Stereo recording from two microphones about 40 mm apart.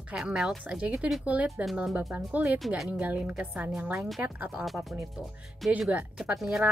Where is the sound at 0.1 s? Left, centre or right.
Right.